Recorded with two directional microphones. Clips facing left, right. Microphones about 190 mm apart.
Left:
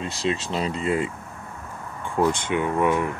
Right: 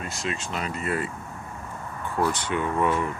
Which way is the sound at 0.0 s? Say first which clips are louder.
Left 5 dB; 30° left (ahead or behind).